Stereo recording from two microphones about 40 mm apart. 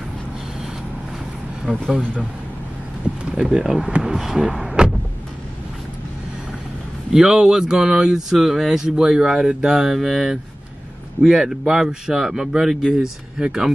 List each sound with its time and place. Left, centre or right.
1.7 s speech: centre
3.3 s speech: centre
7.1 s speech: centre